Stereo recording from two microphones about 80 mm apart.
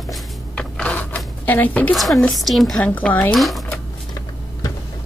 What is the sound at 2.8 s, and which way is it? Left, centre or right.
Speech, centre.